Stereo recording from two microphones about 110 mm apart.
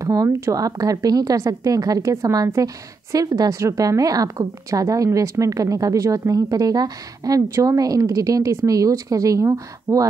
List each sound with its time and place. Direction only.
0.0 s a woman's voice: 30° right (ahead or behind)